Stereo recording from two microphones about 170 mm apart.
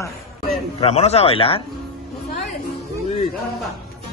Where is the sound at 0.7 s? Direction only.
40° left (ahead or behind).